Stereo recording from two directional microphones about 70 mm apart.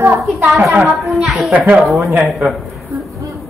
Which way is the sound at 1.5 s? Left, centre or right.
Right.